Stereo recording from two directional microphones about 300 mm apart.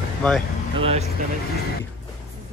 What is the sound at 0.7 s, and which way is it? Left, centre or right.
Speech, centre.